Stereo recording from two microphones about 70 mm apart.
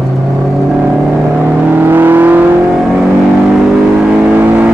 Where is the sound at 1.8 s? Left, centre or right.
Right.